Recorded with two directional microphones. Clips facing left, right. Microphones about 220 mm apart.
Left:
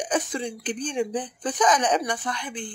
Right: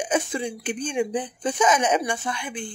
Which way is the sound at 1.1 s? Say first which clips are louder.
Right 2 dB; 25° right (ahead or behind).